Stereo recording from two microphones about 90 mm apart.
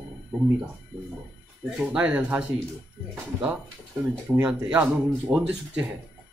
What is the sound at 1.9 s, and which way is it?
Speech, 15° right (ahead or behind).